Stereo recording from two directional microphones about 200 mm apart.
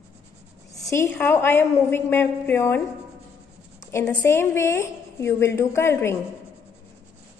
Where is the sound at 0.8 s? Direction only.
15° left (ahead or behind).